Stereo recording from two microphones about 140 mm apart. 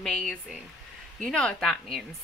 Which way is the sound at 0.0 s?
5° left (ahead or behind).